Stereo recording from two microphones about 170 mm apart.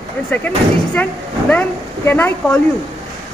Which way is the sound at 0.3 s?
10° left (ahead or behind).